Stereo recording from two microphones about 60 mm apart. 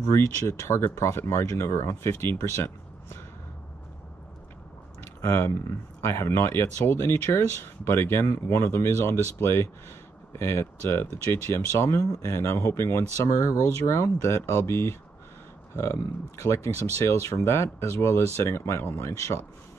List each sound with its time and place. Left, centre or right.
0.0 s speech: left
5.0 s speech: left